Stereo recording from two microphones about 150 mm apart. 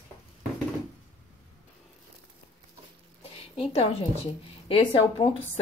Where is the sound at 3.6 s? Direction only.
40° left (ahead or behind).